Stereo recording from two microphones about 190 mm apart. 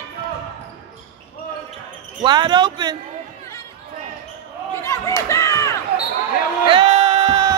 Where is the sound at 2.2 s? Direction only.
25° right (ahead or behind).